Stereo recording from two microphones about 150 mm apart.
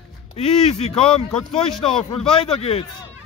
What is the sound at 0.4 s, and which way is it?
A man's voice, 45° left (ahead or behind).